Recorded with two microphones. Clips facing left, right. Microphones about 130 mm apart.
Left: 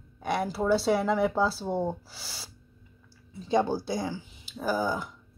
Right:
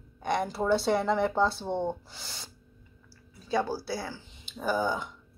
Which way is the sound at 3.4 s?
20° left (ahead or behind).